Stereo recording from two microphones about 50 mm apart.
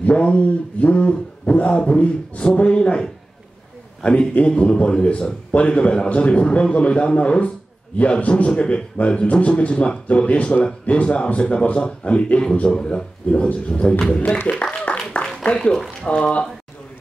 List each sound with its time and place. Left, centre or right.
0.0 s speech: left
14.5 s a sound: left
15.5 s a man's voice: centre